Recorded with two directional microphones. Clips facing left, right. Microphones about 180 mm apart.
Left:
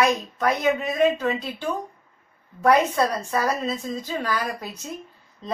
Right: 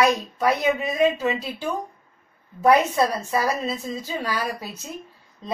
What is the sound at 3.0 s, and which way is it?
A woman's voice, 10° right (ahead or behind).